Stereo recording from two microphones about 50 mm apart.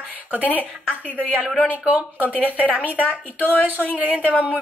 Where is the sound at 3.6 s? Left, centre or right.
Right.